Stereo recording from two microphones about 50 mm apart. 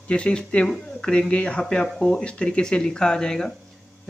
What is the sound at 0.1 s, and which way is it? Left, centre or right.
Speech, left.